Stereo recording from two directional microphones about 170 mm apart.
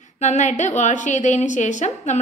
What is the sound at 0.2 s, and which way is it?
A woman's voice, 45° left (ahead or behind).